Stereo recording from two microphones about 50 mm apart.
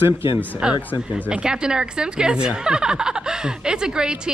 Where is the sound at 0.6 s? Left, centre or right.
Centre.